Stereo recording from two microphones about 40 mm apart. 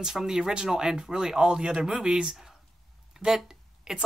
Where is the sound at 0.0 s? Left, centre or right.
Centre.